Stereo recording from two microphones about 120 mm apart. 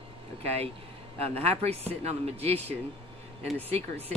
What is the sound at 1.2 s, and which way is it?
Speech, 60° right (ahead or behind).